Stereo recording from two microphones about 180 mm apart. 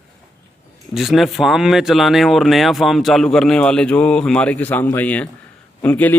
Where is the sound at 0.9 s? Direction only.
Centre (ahead or behind).